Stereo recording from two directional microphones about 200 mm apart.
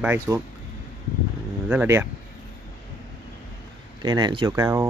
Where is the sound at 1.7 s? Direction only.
10° right (ahead or behind).